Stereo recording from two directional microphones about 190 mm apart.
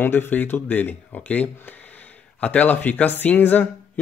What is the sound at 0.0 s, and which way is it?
Speech, 10° left (ahead or behind).